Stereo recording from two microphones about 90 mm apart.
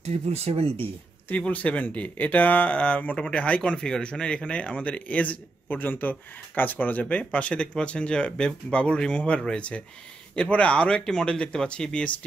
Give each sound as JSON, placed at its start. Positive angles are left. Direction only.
{"t": 1.3, "sound": "speech", "side_deg": 15}